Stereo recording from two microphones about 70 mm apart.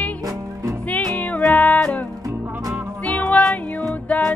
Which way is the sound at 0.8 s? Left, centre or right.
Left.